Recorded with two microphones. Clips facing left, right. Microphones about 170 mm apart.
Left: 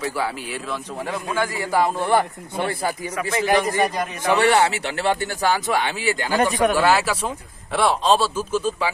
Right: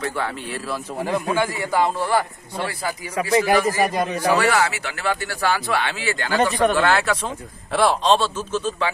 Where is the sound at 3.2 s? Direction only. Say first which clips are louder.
Right 5 dB; 30° right (ahead or behind).